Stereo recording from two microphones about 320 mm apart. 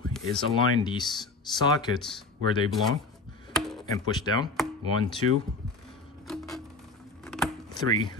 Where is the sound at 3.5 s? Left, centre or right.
Centre.